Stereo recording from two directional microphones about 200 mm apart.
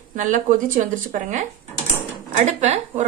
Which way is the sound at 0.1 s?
40° right (ahead or behind).